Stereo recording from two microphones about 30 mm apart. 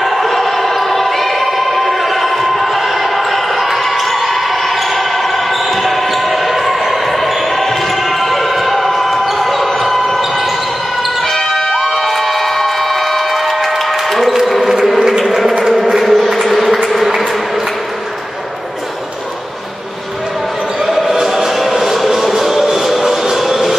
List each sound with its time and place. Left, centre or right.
0.0 s a sound: centre
3.6 s basketball bounce: centre
11.7 s cheering: centre
12.0 s a sound: centre
15.0 s bee: centre
16.0 s a sound: centre
20.8 s basketball bounce: centre
21.5 s music: centre
23.3 s vehicle: centre